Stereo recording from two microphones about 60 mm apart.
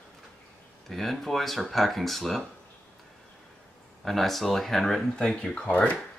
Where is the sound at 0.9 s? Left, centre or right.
Centre.